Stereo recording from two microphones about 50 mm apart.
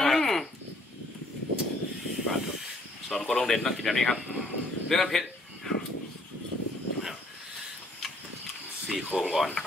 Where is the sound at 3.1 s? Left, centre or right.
Centre.